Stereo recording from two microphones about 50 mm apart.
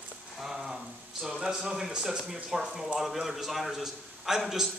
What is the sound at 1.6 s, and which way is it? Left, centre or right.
A man's voice, centre.